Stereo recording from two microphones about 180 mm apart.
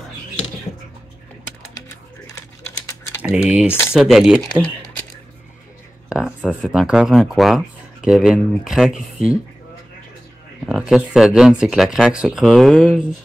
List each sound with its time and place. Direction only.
1.7 s a sound: 15° left (ahead or behind)
3.2 s speech: 5° right (ahead or behind)
6.0 s speech: 5° right (ahead or behind)
10.7 s speech: 5° right (ahead or behind)